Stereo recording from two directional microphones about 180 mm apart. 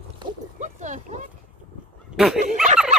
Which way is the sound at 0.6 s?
40° right (ahead or behind).